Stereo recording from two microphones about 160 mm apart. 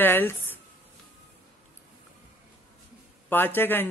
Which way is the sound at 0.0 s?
15° left (ahead or behind).